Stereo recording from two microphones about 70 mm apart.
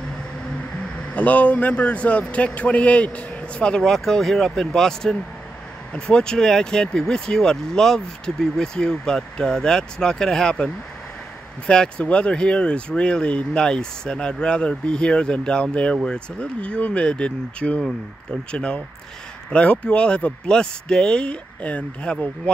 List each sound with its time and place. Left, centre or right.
1.1 s speech: left